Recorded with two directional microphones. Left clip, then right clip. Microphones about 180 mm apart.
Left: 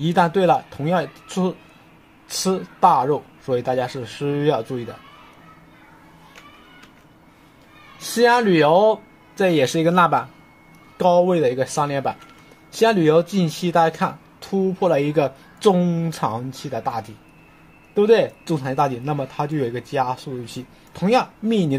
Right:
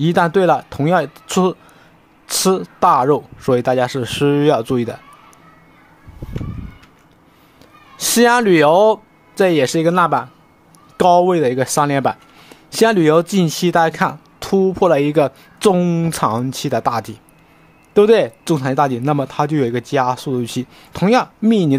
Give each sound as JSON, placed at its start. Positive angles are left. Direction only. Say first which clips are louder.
{"t": 0.0, "sound": "speech", "louder": "right 3 dB", "side_deg": -35}
{"t": 8.2, "sound": "speech", "louder": "right 3 dB", "side_deg": -45}
{"t": 11.0, "sound": "speech", "louder": "right 4 dB", "side_deg": -45}